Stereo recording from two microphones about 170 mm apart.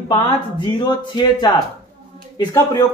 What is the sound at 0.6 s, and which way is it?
Speech, 25° left (ahead or behind).